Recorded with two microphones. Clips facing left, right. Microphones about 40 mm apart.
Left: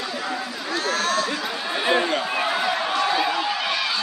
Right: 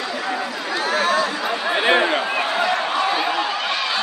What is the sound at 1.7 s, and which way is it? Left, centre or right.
Speech, right.